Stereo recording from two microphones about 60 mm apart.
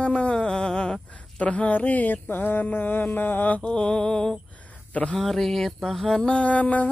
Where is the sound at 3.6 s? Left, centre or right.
Centre.